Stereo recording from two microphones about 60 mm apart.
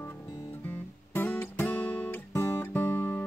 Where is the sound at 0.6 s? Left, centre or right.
Left.